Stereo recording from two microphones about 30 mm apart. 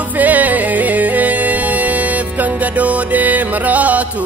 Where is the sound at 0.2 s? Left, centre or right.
Right.